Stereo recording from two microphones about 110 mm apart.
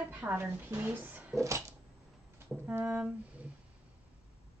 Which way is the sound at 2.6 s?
15° right (ahead or behind).